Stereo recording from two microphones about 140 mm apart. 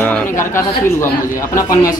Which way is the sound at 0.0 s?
15° left (ahead or behind).